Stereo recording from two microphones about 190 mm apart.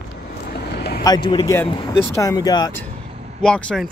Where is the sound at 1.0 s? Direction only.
20° left (ahead or behind).